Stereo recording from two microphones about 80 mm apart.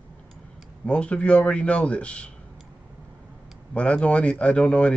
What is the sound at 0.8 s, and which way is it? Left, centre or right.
Speech, centre.